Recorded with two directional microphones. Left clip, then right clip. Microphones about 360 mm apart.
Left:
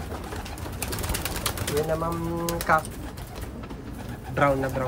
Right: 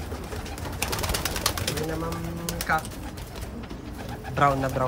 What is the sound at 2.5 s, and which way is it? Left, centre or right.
Music, centre.